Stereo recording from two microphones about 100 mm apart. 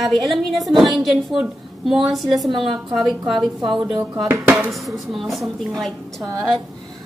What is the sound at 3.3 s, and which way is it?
Speech, 55° right (ahead or behind).